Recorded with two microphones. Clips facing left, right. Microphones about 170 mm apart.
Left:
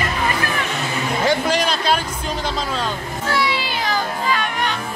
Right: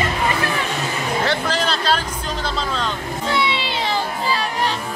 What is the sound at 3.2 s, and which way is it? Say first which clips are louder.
Music: even; 25° right (ahead or behind).